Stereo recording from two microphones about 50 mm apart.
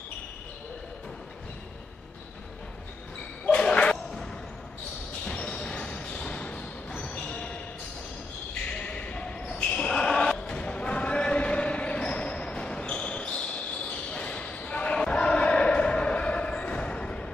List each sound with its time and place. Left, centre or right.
3.4 s ping: centre
5.3 s basketball bounce: left
8.8 s basketball bounce: left